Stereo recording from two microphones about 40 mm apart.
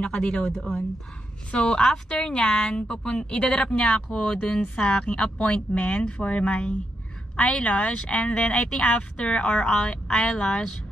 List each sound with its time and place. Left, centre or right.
0.0 s speech: left
0.5 s a woman's voice: centre
8.6 s speech: centre
8.9 s speech: left